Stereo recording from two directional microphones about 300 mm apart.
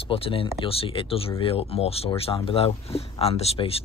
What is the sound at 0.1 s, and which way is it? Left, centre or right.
Speech, centre.